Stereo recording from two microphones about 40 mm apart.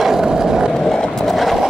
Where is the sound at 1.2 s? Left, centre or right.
Centre.